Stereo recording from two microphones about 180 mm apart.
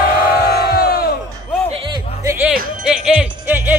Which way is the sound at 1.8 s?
15° right (ahead or behind).